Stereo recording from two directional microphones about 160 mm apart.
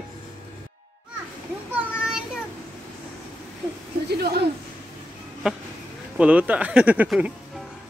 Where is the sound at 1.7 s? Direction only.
5° right (ahead or behind).